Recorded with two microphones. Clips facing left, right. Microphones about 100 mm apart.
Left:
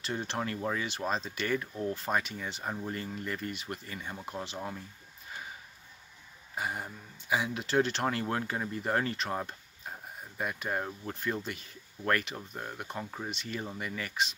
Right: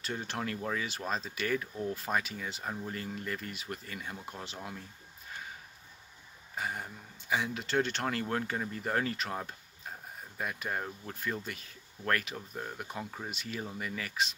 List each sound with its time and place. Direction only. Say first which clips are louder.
0.0 s speech: left 2 dB; centre (ahead or behind)
6.5 s speech: left 2 dB; 5° left (ahead or behind)